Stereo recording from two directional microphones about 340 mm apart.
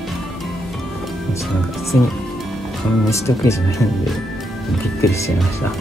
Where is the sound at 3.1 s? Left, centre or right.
Centre.